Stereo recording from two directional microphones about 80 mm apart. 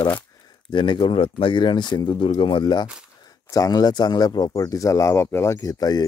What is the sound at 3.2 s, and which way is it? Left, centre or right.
Speech, left.